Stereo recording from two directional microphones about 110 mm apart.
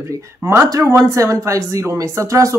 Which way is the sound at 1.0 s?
30° right (ahead or behind).